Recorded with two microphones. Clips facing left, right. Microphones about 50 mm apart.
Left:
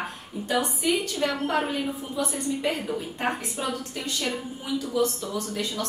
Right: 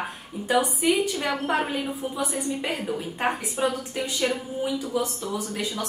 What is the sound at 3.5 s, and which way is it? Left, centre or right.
A woman's voice, centre.